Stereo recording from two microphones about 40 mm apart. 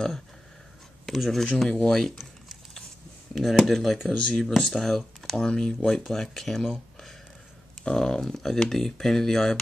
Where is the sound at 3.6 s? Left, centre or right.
Centre.